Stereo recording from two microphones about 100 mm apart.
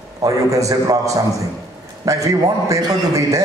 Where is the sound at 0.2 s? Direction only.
35° right (ahead or behind).